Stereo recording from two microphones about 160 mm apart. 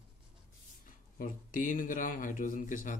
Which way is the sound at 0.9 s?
60° left (ahead or behind).